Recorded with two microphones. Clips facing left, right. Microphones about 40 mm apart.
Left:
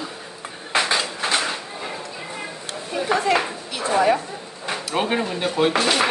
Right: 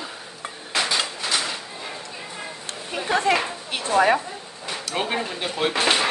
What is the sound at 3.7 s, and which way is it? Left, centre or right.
Speech, right.